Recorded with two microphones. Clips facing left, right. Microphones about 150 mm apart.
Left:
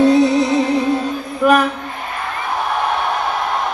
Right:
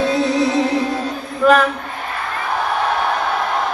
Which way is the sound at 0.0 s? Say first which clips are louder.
Left 5 dB; 15° left (ahead or behind).